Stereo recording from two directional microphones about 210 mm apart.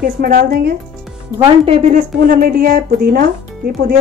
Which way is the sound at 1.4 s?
30° right (ahead or behind).